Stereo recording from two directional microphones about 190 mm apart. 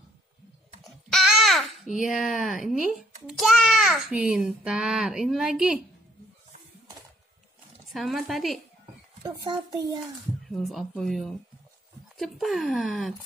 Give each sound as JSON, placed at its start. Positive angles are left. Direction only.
{"t": 0.8, "sound": "babbling", "side_deg": 0}
{"t": 2.6, "sound": "a child's voice", "side_deg": 0}
{"t": 7.9, "sound": "a child's voice", "side_deg": 0}
{"t": 9.2, "sound": "speech", "side_deg": -25}
{"t": 10.5, "sound": "a child's voice", "side_deg": 0}